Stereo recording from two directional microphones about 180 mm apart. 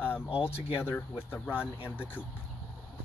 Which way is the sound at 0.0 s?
10° left (ahead or behind).